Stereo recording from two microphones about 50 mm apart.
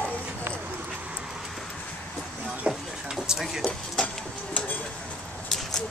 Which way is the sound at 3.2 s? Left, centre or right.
Centre.